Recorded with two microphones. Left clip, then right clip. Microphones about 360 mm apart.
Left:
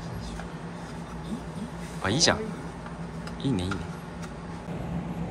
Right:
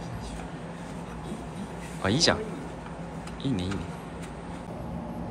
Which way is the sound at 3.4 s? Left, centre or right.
Centre.